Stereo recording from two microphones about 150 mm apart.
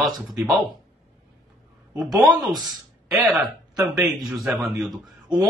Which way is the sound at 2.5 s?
30° right (ahead or behind).